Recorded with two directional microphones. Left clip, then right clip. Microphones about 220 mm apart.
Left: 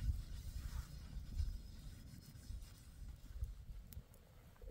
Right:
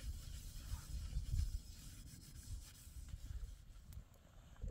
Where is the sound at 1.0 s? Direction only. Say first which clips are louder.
Right 3 dB; 30° right (ahead or behind).